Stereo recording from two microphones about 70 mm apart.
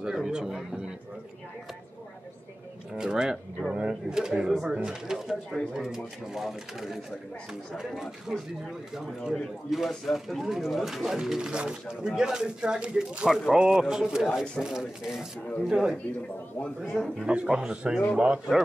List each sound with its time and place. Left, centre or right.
0.0 s speech: centre
3.0 s speech: centre
17.0 s speech: centre
17.3 s speech: centre